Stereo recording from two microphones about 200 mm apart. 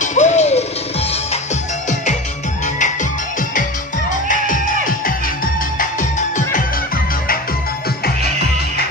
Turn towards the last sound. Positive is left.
turn(degrees=45)  # may be behind; listen again after turning